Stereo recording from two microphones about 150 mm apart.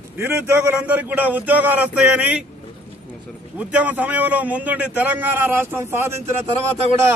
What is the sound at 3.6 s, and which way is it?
A man's voice, 10° right (ahead or behind).